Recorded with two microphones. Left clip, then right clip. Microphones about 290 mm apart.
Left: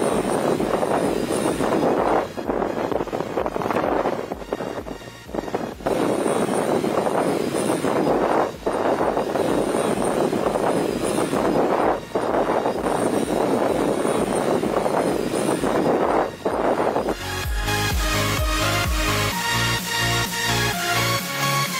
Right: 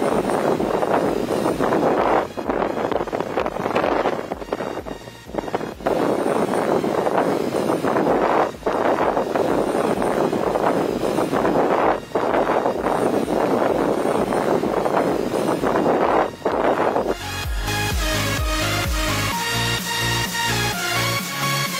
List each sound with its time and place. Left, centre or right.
0.9 s vehicle: centre
5.9 s vehicle: left
20.1 s music: centre